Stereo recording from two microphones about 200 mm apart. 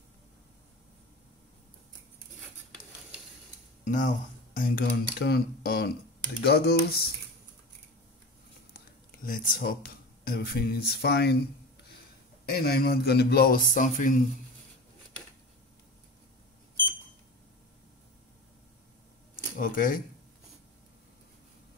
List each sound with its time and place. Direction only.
3.8 s a man's voice: 40° left (ahead or behind)
8.7 s speech: 45° left (ahead or behind)
12.4 s a man's voice: 50° left (ahead or behind)
19.6 s a man's voice: 45° left (ahead or behind)